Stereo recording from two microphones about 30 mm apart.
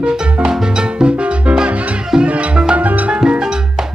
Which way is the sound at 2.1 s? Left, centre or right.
Right.